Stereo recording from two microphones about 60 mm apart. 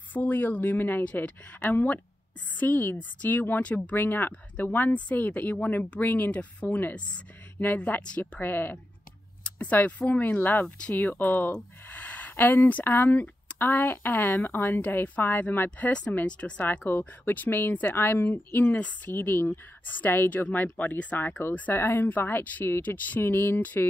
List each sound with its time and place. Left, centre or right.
0.1 s speech: left
1.0 s speech: left
3.9 s speech: left
8.2 s speech: left
9.4 s a sound: left
9.8 s speech: left
11.9 s a sound: left
12.8 s speech: left
15.9 s speech: centre; by 18.8 s left
18.8 s speech: left
19.1 s speech: left
21.7 s speech: left